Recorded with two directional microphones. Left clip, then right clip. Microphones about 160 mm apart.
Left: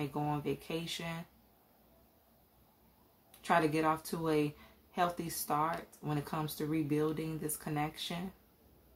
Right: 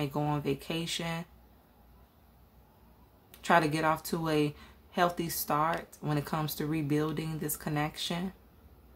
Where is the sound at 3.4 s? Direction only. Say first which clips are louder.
Right 4 dB; 30° right (ahead or behind).